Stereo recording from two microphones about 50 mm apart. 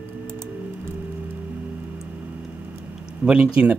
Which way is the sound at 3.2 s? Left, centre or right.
Right.